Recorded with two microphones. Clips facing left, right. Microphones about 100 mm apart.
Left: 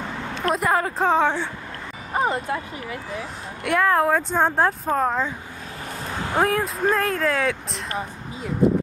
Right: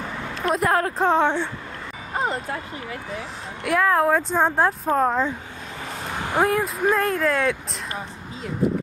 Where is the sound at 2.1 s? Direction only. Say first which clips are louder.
Left 3 dB; 20° left (ahead or behind).